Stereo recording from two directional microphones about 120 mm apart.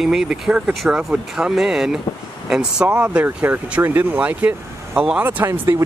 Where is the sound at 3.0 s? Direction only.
10° right (ahead or behind).